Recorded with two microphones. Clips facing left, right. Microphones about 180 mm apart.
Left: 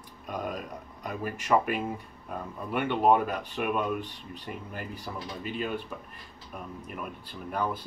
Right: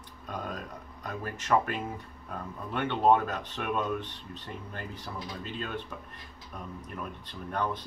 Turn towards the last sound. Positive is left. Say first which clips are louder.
# left 1 dB
turn(degrees=5)  # may be behind; listen again after turning